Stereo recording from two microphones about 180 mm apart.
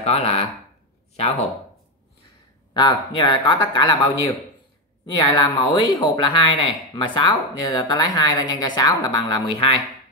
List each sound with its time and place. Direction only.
0.0 s speech: 35° left (ahead or behind)
2.7 s speech: 25° left (ahead or behind)
5.0 s speech: 20° left (ahead or behind)